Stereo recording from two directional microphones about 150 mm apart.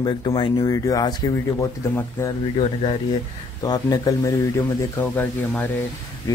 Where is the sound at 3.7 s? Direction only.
25° left (ahead or behind).